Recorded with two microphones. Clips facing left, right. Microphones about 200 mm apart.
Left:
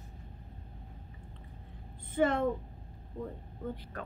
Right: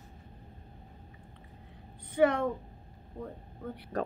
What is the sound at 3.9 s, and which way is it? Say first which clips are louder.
Speech: right 10 dB; 40° right (ahead or behind).